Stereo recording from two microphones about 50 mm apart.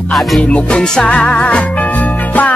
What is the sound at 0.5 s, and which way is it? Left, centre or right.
Music, centre.